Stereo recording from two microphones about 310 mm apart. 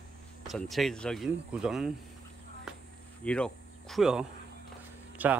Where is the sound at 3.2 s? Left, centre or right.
Centre.